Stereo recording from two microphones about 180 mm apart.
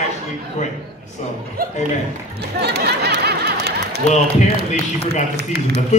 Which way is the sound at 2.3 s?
65° right (ahead or behind).